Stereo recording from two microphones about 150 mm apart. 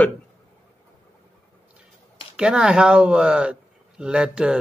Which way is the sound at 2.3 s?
5° right (ahead or behind).